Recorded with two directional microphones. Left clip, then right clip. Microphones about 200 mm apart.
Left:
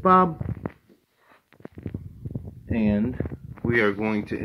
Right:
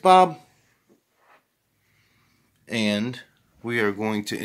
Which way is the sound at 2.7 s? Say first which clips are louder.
Right 1 dB; 10° right (ahead or behind).